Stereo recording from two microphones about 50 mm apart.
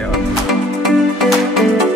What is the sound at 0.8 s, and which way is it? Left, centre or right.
Music, centre.